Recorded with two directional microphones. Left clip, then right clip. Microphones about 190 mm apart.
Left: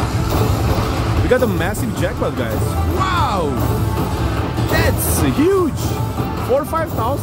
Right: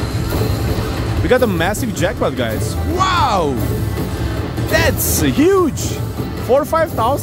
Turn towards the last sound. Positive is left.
turn(degrees=-15)  # may be behind; listen again after turning